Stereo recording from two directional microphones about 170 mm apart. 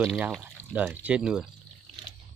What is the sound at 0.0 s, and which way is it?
Speech, 5° right (ahead or behind).